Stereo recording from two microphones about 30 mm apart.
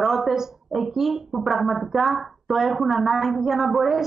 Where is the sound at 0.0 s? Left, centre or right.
Centre.